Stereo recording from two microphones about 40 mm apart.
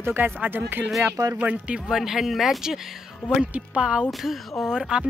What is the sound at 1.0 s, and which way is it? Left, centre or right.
Speech, right.